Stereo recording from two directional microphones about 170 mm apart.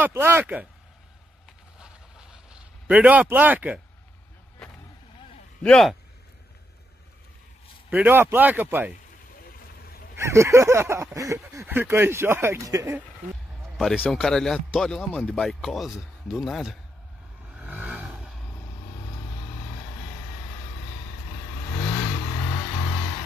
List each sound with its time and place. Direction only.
0.0 s speech: 15° right (ahead or behind)
1.8 s a sound: 5° right (ahead or behind)
5.6 s speech: centre (ahead or behind)
7.9 s speech: 10° right (ahead or behind)
10.1 s speech: 15° right (ahead or behind)
13.7 s speech: centre (ahead or behind)
17.5 s vehicle: 10° right (ahead or behind)